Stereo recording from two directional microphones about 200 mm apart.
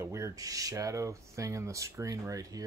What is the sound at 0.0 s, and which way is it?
Speech, 15° right (ahead or behind).